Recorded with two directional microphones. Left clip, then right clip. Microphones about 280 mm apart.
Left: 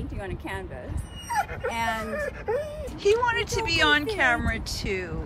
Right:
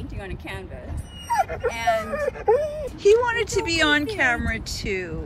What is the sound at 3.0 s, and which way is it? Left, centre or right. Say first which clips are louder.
Speech: right 4 dB; centre.